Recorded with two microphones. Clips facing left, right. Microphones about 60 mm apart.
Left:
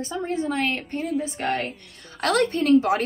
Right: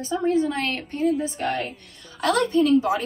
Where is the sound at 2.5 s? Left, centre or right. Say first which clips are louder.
Right 1 dB; left.